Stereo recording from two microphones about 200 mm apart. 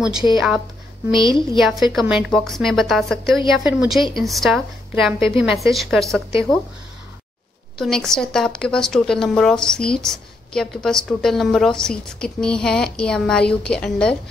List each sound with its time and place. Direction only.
0.2 s speech: 10° right (ahead or behind)
1.1 s a woman's voice: 25° left (ahead or behind)
1.6 s speech: centre (ahead or behind)
7.7 s speech: centre (ahead or behind)